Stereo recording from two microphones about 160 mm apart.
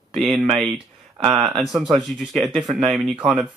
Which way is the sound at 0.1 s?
Centre (ahead or behind).